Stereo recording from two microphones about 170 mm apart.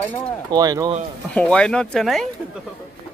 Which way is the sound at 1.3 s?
5° left (ahead or behind).